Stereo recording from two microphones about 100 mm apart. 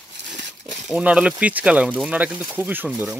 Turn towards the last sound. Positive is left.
turn(degrees=-15)  # may be behind; listen again after turning